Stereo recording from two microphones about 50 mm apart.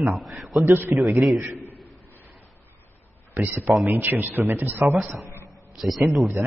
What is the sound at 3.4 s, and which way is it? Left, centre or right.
Speech, right.